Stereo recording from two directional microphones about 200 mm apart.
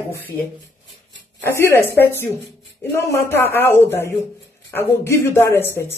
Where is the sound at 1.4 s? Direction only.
10° left (ahead or behind).